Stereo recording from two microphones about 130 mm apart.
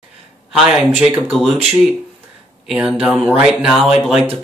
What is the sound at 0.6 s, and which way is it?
Speech, 5° right (ahead or behind).